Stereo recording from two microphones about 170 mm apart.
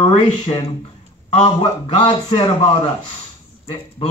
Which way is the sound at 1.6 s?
35° left (ahead or behind).